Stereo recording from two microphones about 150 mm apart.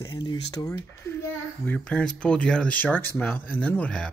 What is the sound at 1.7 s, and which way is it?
Speech, 5° left (ahead or behind).